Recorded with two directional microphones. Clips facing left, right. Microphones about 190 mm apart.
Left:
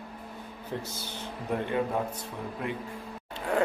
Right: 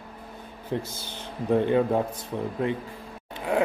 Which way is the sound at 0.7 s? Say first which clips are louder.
Right 5 dB; 25° right (ahead or behind).